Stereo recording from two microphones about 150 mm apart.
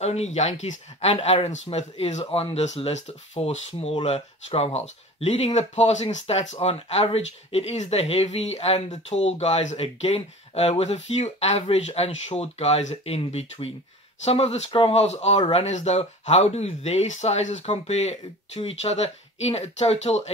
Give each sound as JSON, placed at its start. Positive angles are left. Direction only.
{"t": 0.0, "sound": "speech", "side_deg": 45}